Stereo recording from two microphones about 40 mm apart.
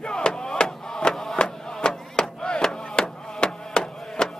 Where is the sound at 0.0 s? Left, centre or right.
Left.